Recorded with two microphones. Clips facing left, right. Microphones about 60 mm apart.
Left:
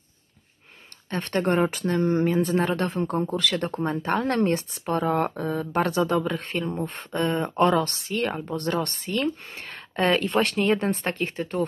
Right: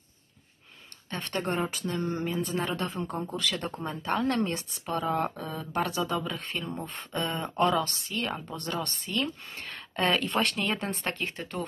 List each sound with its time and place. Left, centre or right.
1.1 s speech: left
3.2 s speech: left
3.4 s speech: left